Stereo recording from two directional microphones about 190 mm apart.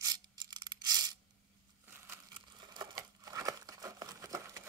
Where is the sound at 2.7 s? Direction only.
20° right (ahead or behind).